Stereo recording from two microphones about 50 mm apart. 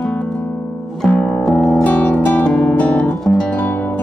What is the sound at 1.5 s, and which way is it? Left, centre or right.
Music, centre.